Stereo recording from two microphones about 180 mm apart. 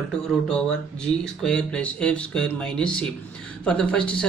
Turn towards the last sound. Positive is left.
turn(degrees=5)  # may be behind; listen again after turning